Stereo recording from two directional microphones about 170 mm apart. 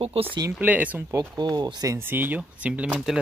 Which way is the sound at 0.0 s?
35° right (ahead or behind).